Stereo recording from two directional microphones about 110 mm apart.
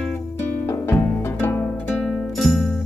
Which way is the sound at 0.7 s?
20° left (ahead or behind).